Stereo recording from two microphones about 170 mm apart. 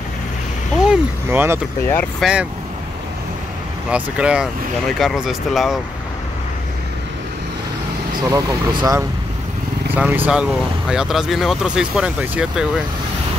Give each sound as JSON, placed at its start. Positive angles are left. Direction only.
{"t": 0.8, "sound": "speech", "side_deg": -15}
{"t": 1.8, "sound": "speech", "side_deg": 15}
{"t": 2.1, "sound": "speech", "side_deg": -5}
{"t": 3.9, "sound": "speech", "side_deg": -5}
{"t": 8.2, "sound": "speech", "side_deg": -20}
{"t": 9.9, "sound": "speech", "side_deg": -10}